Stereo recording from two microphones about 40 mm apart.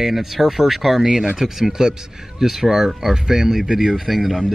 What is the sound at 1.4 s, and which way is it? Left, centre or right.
Speech, centre.